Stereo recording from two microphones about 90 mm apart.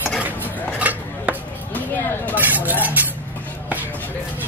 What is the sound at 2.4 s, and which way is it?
Speech, 20° right (ahead or behind).